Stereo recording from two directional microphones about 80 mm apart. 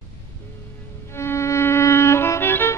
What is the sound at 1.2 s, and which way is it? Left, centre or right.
Music, left.